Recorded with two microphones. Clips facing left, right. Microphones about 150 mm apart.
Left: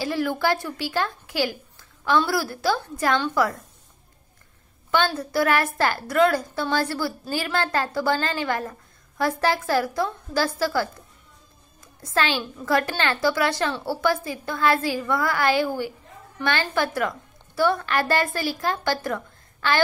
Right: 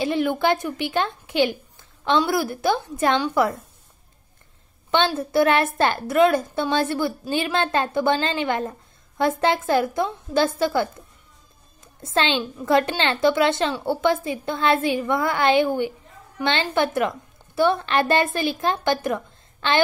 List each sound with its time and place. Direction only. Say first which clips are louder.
0.0 s a woman's voice: right 3 dB; 20° right (ahead or behind)
4.9 s a woman's voice: right 3 dB; 25° right (ahead or behind)